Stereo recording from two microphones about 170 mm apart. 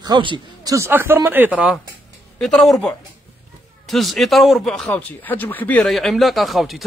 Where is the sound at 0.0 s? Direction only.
25° right (ahead or behind).